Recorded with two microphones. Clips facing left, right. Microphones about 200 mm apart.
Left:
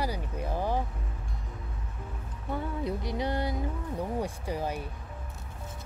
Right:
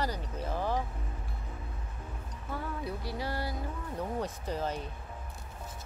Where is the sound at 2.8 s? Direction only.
20° left (ahead or behind).